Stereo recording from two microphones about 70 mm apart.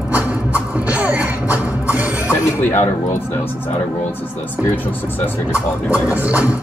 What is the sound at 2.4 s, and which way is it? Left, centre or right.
Speech, left.